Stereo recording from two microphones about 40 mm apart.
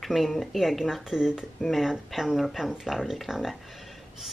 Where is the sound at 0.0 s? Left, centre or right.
Centre.